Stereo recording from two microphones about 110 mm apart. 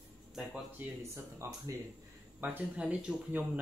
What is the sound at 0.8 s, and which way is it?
Speech, 15° right (ahead or behind).